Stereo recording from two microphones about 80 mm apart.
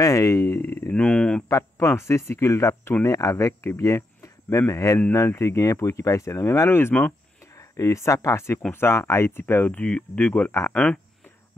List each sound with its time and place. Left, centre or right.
0.0 s speech: left
0.6 s speech: left
0.9 s speech: centre
1.6 s speech: left
7.5 s speech: left; by 11.0 s centre